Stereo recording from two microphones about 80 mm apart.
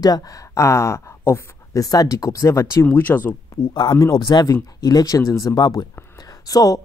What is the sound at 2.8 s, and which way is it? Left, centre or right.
Speech, left.